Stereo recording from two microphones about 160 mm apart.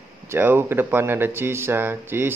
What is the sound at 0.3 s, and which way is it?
Speech, 15° right (ahead or behind).